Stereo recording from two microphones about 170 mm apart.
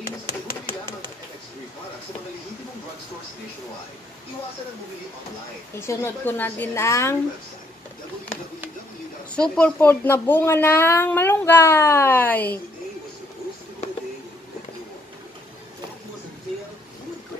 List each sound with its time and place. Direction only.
0.7 s a sound: 30° right (ahead or behind)
5.8 s speech: 15° left (ahead or behind)
9.3 s speech: 5° left (ahead or behind)